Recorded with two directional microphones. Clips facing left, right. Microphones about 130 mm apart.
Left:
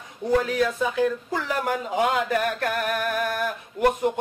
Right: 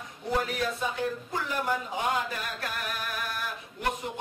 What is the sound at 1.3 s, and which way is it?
Speech, 90° left.